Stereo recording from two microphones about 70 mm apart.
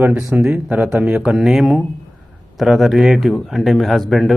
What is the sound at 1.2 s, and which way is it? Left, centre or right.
A man's voice, centre.